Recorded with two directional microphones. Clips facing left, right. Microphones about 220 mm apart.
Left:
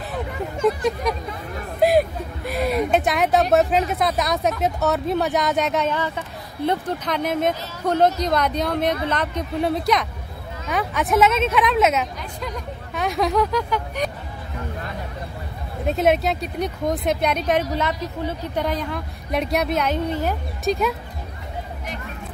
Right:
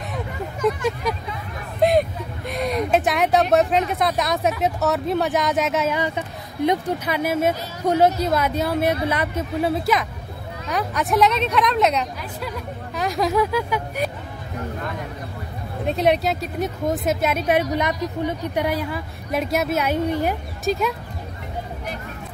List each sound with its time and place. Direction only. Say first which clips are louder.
1.8 s a sound: left 1 dB; 5° left (ahead or behind)
3.9 s speech: even; centre (ahead or behind)
5.9 s speech: right 2 dB; 15° right (ahead or behind)
15.8 s speech: even; centre (ahead or behind)
20.6 s speech: left 1 dB; centre (ahead or behind)